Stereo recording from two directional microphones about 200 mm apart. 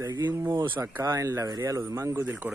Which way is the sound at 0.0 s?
20° right (ahead or behind).